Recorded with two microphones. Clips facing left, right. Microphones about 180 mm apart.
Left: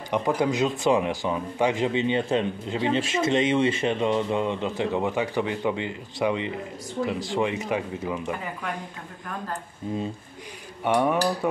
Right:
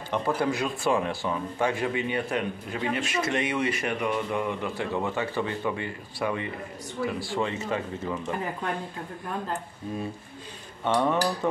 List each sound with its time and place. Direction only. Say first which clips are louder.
0.1 s speech: left 3 dB; 15° left (ahead or behind)
10.8 s speech: left 2 dB; 10° left (ahead or behind)